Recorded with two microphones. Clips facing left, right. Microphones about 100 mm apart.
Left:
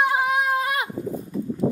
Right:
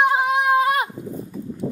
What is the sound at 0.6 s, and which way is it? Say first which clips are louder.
Livestock: right 6 dB; 25° right (ahead or behind).